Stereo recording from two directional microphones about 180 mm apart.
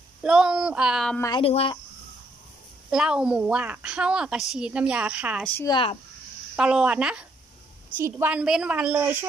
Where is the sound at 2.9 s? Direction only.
5° right (ahead or behind).